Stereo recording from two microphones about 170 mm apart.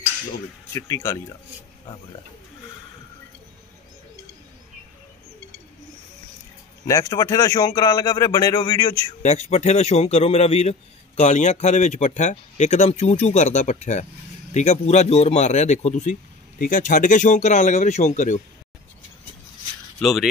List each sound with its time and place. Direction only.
0.7 s speech: 15° left (ahead or behind)
6.9 s a man's voice: 20° left (ahead or behind)
9.2 s a man's voice: 40° left (ahead or behind)
20.0 s speech: centre (ahead or behind)